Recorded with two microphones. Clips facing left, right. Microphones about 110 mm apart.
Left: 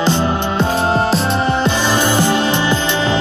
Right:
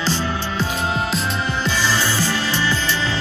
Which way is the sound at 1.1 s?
60° left (ahead or behind).